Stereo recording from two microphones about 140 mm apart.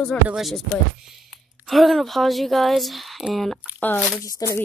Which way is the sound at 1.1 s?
Centre (ahead or behind).